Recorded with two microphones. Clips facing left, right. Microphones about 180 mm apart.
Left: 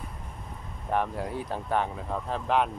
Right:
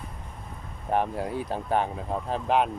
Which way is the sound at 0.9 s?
25° right (ahead or behind).